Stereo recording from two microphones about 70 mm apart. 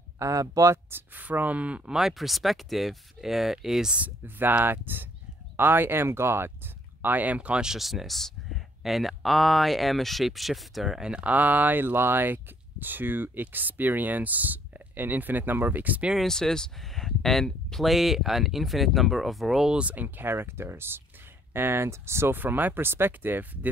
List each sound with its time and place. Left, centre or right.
0.2 s speech: right
0.8 s speech: right
2.0 s speech: centre
3.9 s speech: right
16.3 s speech: centre
19.8 s speech: right